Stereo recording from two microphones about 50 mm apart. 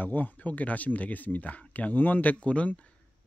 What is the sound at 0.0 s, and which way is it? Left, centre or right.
A man's voice, left.